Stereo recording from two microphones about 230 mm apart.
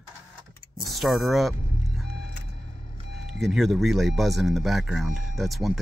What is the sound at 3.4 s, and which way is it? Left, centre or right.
Speech, centre.